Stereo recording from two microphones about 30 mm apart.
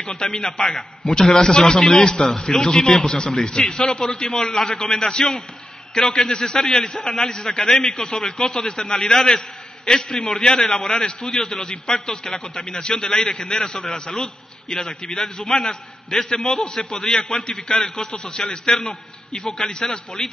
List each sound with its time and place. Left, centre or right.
0.2 s a man's voice: left
1.3 s a man's voice: left
4.6 s a man's voice: centre